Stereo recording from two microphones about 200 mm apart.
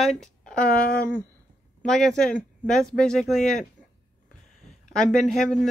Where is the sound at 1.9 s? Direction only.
Centre (ahead or behind).